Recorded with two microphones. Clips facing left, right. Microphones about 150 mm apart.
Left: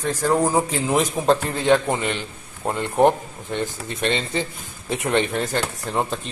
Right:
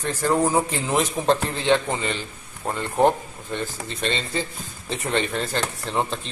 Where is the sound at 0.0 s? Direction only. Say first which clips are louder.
Left 1 dB; 10° left (ahead or behind).